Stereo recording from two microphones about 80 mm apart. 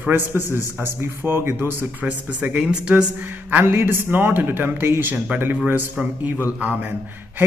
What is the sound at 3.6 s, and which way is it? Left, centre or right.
A man's voice, right.